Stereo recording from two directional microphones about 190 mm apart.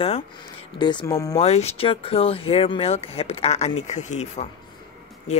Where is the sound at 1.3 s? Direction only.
35° left (ahead or behind).